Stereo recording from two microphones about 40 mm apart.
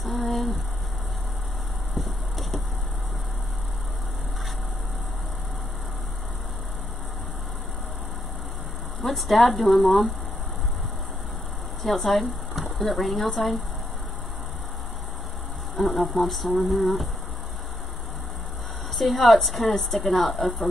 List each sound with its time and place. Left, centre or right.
0.0 s a sound: centre
2.0 s a sound: centre
9.0 s speech: centre
11.8 s speech: centre
15.7 s speech: centre
18.9 s speech: centre